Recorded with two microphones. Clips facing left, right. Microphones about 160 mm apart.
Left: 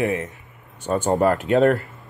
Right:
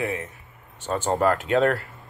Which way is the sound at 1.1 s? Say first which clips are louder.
Left 3 dB; 40° left (ahead or behind).